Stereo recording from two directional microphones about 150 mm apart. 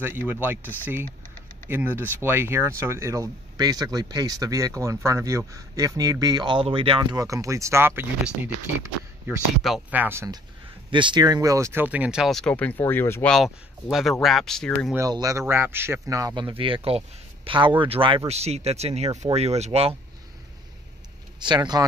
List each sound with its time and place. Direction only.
0.0 s speech: 10° right (ahead or behind)
1.7 s speech: 15° right (ahead or behind)
9.6 s speech: centre (ahead or behind)
9.9 s speech: 15° right (ahead or behind)
10.9 s speech: 30° right (ahead or behind); by 13.3 s 15° left (ahead or behind)
13.3 s speech: centre (ahead or behind)
15.0 s speech: 25° right (ahead or behind); by 19.9 s 45° right (ahead or behind)
21.4 s speech: 30° right (ahead or behind)